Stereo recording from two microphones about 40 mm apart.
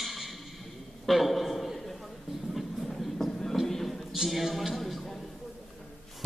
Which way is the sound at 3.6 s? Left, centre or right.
Centre.